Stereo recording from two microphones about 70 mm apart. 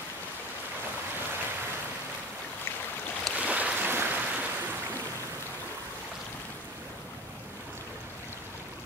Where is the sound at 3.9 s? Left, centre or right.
Right.